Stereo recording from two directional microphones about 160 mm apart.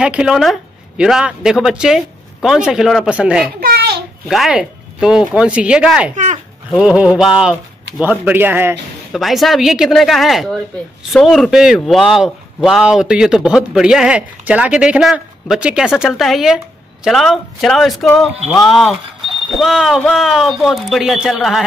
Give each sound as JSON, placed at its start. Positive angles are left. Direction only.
{"t": 0.0, "sound": "speech", "side_deg": -5}
{"t": 3.6, "sound": "a sound", "side_deg": -90}
{"t": 4.3, "sound": "speech", "side_deg": -5}
{"t": 6.1, "sound": "a sound", "side_deg": -50}
{"t": 6.7, "sound": "speech", "side_deg": -5}
{"t": 9.1, "sound": "speech", "side_deg": 0}